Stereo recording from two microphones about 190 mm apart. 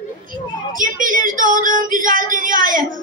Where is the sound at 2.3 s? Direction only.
45° right (ahead or behind).